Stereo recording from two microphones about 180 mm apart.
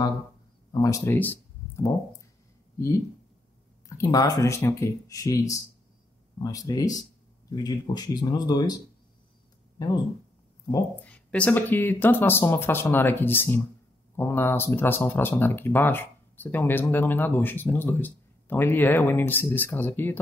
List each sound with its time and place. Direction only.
0.7 s speech: 15° left (ahead or behind)
4.0 s speech: 20° left (ahead or behind)
9.8 s speech: 25° left (ahead or behind)
11.0 s speech: 5° left (ahead or behind)